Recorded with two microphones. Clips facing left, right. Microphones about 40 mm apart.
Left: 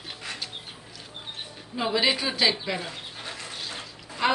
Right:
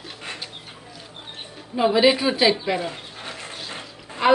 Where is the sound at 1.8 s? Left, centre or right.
Centre.